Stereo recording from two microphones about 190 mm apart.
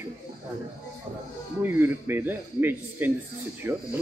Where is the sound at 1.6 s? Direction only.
10° right (ahead or behind).